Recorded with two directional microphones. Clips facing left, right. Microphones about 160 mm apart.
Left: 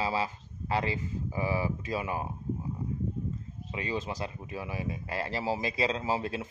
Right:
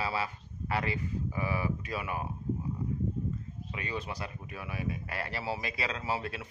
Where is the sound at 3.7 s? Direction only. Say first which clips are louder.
Left 4 dB; 25° left (ahead or behind).